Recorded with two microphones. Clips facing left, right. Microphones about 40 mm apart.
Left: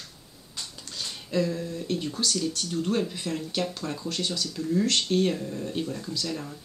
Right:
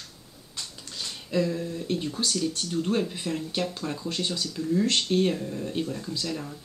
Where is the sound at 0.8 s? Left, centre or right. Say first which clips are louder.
Left 1 dB; centre.